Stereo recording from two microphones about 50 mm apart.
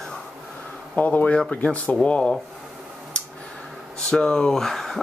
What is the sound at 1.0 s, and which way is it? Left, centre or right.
Speech, left.